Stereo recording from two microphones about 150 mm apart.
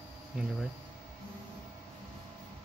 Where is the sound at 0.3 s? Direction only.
10° right (ahead or behind).